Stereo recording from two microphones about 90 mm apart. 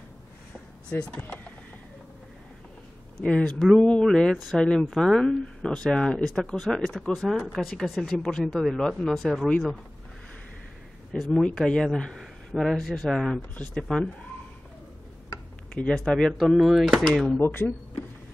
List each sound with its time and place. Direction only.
0.8 s speech: 10° left (ahead or behind)
3.2 s speech: 10° left (ahead or behind)
4.4 s speech: centre (ahead or behind)
11.1 s speech: centre (ahead or behind)
15.7 s speech: 5° left (ahead or behind)
17.3 s speech: 20° left (ahead or behind)